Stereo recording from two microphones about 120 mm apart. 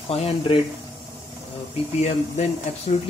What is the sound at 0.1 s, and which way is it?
Speech, 55° left (ahead or behind).